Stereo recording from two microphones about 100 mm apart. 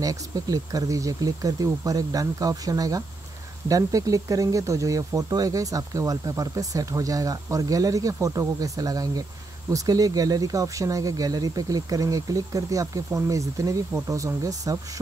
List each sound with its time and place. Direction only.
0.0 s speech: 35° right (ahead or behind)